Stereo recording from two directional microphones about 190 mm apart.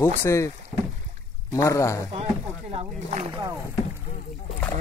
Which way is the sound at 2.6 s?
35° right (ahead or behind).